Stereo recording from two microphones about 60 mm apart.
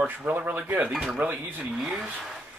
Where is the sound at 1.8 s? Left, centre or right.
Centre.